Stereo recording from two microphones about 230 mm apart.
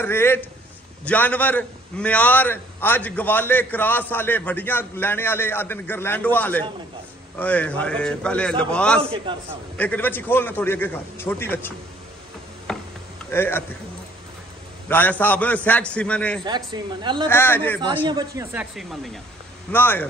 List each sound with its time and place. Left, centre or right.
0.0 s a man's voice: centre
9.1 s a woman's voice: right
9.8 s a man's voice: centre
12.7 s tick-tock: centre
13.3 s a man's voice: centre
14.9 s a man's voice: centre
16.4 s a woman's voice: centre
17.3 s a man's voice: centre
18.0 s a man's voice: centre